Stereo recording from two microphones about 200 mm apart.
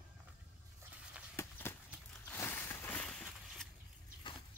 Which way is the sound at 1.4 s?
10° left (ahead or behind).